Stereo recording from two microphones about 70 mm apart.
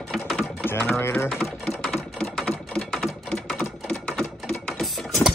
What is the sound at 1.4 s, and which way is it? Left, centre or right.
Typing, centre.